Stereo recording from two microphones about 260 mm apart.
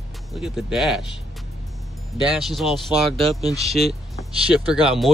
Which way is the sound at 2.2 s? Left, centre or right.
Centre.